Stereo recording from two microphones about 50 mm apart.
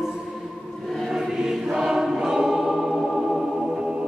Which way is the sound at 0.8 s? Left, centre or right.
Centre.